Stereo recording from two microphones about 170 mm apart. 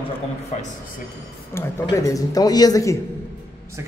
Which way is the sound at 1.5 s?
20° left (ahead or behind).